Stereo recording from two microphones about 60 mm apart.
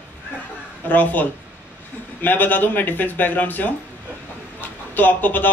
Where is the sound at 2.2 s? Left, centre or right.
Left.